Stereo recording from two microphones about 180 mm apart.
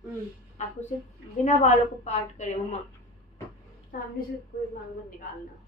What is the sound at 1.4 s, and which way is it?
A woman's voice, 40° left (ahead or behind).